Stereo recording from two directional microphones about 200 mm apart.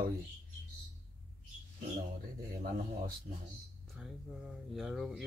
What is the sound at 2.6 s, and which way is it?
Speech, 45° right (ahead or behind).